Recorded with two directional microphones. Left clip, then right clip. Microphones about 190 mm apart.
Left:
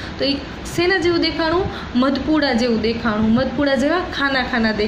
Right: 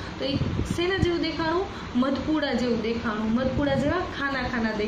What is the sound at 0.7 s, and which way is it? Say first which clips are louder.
A woman's voice: left 9 dB; 40° left (ahead or behind).